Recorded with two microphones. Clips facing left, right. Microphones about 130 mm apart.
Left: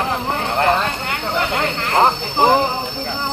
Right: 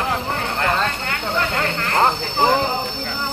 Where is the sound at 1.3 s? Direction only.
20° left (ahead or behind).